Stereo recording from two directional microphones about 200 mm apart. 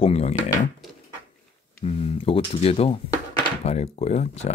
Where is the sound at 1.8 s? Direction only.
30° left (ahead or behind).